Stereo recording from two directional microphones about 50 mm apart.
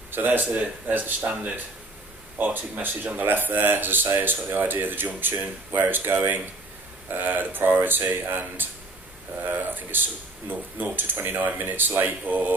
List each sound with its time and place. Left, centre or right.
0.1 s speech: right